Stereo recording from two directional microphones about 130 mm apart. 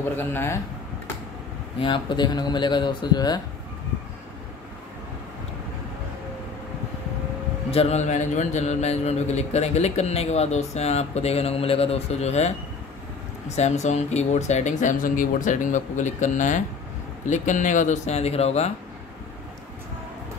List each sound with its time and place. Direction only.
0.1 s a man's voice: 15° left (ahead or behind)
1.8 s speech: 40° left (ahead or behind)
7.7 s speech: 55° left (ahead or behind)
13.6 s speech: 60° left (ahead or behind)